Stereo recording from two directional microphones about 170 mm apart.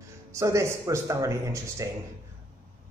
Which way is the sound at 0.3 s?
15° right (ahead or behind).